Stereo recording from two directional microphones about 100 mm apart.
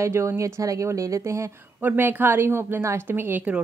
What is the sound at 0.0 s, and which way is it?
A woman's voice, 30° right (ahead or behind).